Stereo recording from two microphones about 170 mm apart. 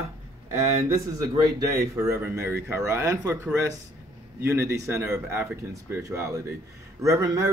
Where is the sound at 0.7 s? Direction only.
20° right (ahead or behind).